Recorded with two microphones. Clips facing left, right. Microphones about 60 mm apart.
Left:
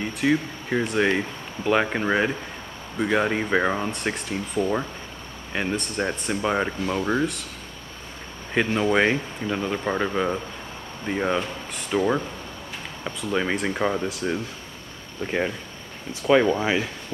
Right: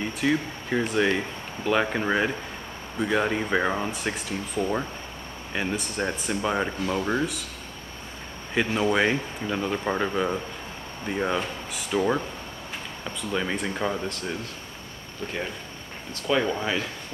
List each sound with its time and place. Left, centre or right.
0.2 s speech: centre
8.5 s speech: centre
13.3 s speech: centre
16.1 s speech: centre